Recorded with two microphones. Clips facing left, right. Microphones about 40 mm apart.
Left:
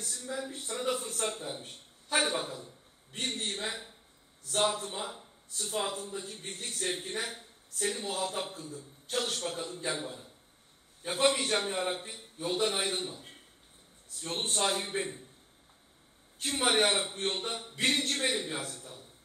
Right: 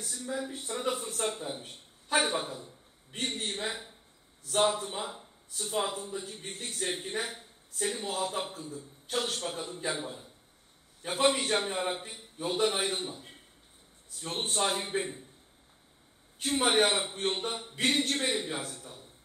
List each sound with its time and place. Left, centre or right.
0.0 s a sound: centre
0.6 s a man's voice: centre
1.6 s a sound: centre
2.1 s a man's voice: centre
2.5 s a man's voice: centre
11.1 s a man's voice: centre
11.5 s a man's voice: centre
14.4 s a man's voice: centre
16.4 s a man's voice: centre